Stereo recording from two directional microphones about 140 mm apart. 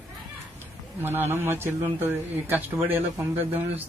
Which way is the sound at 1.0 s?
15° right (ahead or behind).